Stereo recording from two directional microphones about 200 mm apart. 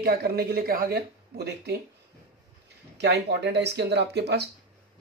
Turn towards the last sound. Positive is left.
turn(degrees=-55)  # may be behind; listen again after turning